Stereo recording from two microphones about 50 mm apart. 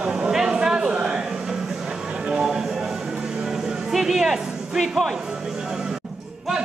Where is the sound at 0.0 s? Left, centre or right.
Centre.